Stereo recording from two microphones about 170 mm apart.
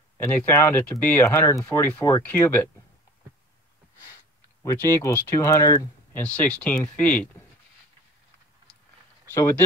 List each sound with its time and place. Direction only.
0.2 s speech: 10° left (ahead or behind)
4.6 s speech: 15° left (ahead or behind)
6.2 s speech: 5° left (ahead or behind)
9.3 s speech: 15° left (ahead or behind)